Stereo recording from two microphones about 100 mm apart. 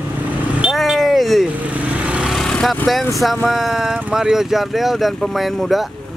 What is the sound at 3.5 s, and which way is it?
Speech, 5° right (ahead or behind).